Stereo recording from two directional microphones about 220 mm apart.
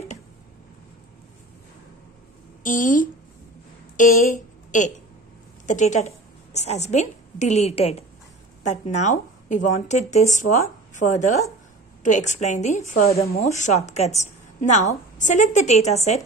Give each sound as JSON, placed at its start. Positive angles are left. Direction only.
{"t": 2.6, "sound": "a woman's voice", "side_deg": 35}